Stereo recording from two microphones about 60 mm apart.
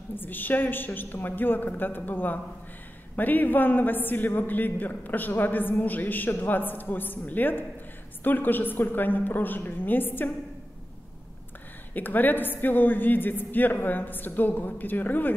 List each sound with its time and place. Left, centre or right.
0.1 s a man's voice: left
11.9 s a man's voice: left